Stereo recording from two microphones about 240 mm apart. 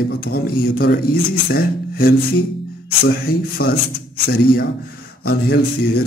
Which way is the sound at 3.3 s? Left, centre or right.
Left.